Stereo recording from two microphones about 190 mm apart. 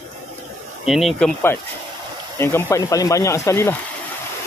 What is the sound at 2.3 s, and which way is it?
Speech, 15° left (ahead or behind).